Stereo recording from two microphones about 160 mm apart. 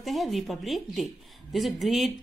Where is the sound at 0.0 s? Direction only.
Centre (ahead or behind).